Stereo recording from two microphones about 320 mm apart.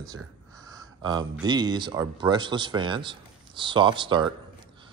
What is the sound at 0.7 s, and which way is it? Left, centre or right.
Speech, centre.